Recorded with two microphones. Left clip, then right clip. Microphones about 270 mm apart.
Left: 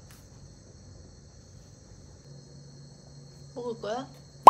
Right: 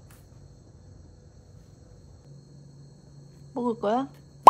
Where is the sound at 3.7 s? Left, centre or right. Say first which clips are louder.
Right 7 dB; right.